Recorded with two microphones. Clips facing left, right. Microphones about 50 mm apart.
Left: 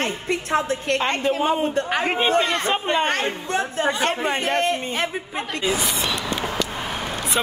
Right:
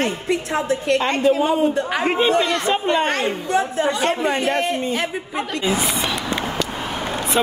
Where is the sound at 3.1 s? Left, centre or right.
Left.